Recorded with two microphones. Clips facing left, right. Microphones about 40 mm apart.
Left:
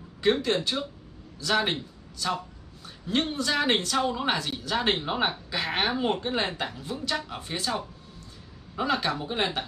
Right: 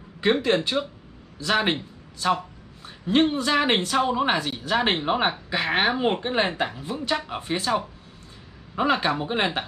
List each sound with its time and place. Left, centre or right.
0.2 s a man's voice: right